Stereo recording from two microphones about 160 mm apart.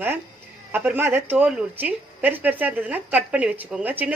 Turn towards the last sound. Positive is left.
turn(degrees=-10)  # may be behind; listen again after turning